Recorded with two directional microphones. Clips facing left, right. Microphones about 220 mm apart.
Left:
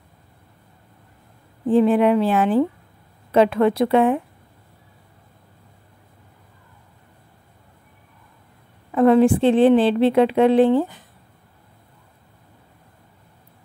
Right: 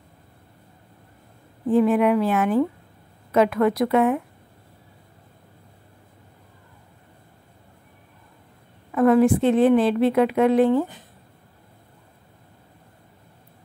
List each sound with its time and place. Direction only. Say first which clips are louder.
1.7 s a woman's voice: left 2 dB; 30° left (ahead or behind)
8.9 s a woman's voice: left 2 dB; 25° left (ahead or behind)